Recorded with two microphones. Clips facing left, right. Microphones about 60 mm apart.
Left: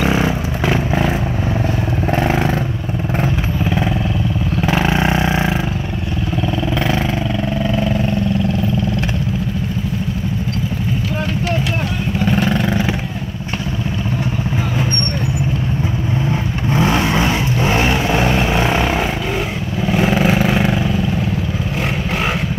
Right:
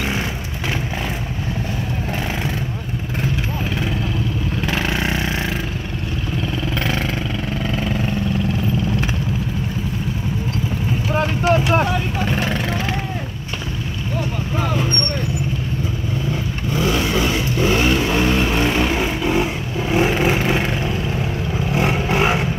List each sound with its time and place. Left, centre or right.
4.6 s vehicle: centre
7.6 s vehicle: centre
12.3 s vehicle: centre
16.3 s vehicle: left; by 19.0 s centre
20.1 s vehicle: centre